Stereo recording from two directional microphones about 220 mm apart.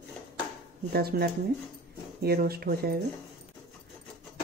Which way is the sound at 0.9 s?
45° right (ahead or behind).